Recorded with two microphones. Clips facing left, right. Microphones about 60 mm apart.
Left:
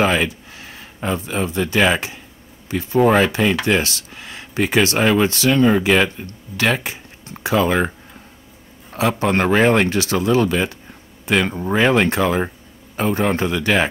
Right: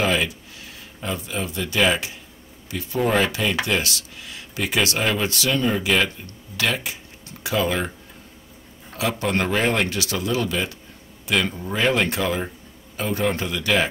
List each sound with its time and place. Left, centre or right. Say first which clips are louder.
0.0 s speech: left 4 dB; left
9.2 s speech: left 6 dB; left